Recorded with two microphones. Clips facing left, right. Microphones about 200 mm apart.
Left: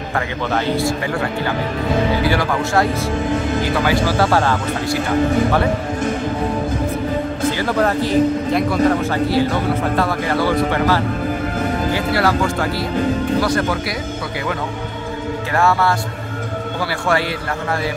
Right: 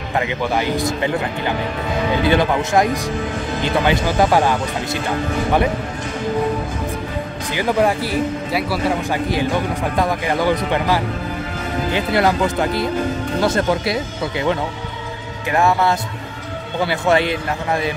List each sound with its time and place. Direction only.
0.1 s a man's voice: 15° right (ahead or behind)
7.5 s a man's voice: 15° right (ahead or behind)
15.5 s speech: 20° right (ahead or behind)